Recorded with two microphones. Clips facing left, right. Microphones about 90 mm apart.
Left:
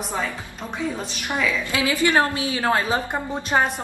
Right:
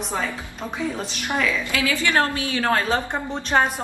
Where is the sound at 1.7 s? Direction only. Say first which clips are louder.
Left 2 dB; 20° left (ahead or behind).